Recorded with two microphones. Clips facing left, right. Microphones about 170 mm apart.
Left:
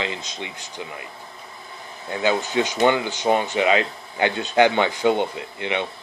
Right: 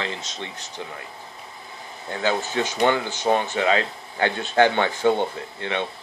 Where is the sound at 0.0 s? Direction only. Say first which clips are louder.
Left 2 dB; 15° left (ahead or behind).